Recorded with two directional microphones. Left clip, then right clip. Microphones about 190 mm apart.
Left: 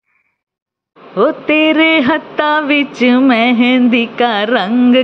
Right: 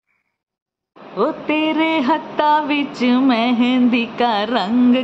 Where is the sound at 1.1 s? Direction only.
15° left (ahead or behind).